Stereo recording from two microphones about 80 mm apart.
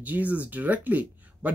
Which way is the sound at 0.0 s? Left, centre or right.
Centre.